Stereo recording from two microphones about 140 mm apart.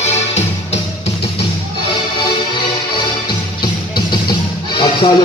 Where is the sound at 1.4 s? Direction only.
35° left (ahead or behind).